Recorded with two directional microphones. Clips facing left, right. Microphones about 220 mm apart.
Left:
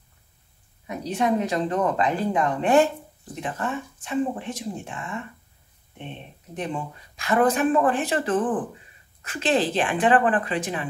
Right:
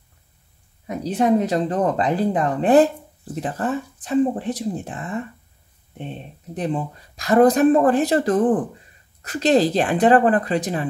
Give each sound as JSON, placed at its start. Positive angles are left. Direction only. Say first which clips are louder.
{"t": 0.8, "sound": "speech", "louder": "right 5 dB", "side_deg": -35}